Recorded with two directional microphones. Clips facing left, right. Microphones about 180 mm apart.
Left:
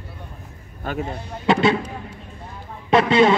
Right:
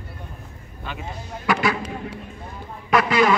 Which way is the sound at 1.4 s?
25° left (ahead or behind).